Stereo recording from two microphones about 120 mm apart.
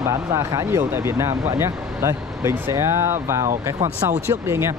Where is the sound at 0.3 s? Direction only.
20° right (ahead or behind).